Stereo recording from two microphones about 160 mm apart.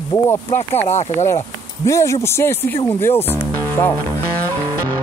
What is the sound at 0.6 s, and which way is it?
Speech, 15° left (ahead or behind).